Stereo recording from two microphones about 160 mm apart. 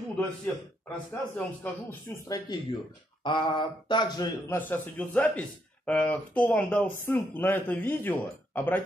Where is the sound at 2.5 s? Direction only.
25° left (ahead or behind).